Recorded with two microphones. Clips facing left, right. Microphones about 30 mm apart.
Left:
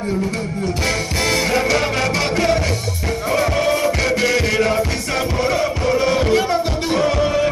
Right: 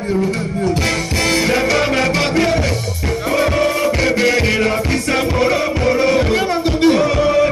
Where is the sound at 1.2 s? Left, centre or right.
Centre.